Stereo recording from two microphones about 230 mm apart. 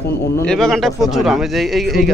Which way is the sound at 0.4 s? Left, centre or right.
Centre.